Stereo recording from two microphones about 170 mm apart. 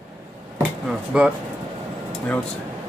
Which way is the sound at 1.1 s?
5° right (ahead or behind).